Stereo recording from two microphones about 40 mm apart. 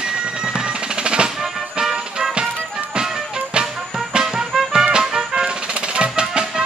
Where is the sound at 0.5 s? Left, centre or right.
Right.